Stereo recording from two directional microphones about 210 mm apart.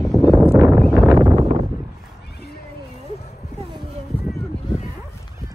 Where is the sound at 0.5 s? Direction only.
10° right (ahead or behind).